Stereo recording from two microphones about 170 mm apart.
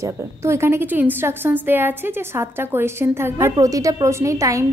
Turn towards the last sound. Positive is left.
turn(degrees=-20)  # may be behind; listen again after turning